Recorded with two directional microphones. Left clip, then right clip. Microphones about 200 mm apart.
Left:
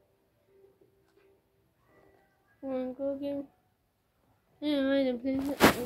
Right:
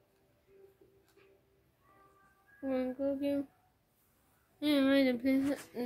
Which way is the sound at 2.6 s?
35° right (ahead or behind).